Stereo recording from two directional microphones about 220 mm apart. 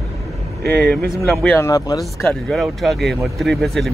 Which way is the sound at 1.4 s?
10° left (ahead or behind).